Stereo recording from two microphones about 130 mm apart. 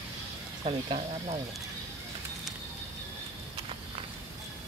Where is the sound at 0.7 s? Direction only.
50° right (ahead or behind).